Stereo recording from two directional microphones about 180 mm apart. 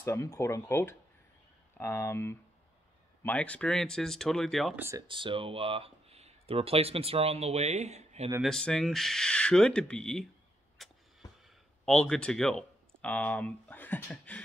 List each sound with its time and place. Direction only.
0.0 s speech: 15° left (ahead or behind)
4.7 s speech: 15° right (ahead or behind)
5.0 s speech: 30° right (ahead or behind)
8.4 s speech: 5° left (ahead or behind)
10.8 s a sound: centre (ahead or behind)
11.8 s speech: 5° left (ahead or behind)